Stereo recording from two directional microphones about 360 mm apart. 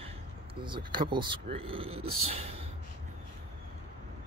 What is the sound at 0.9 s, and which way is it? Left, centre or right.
Speech, centre.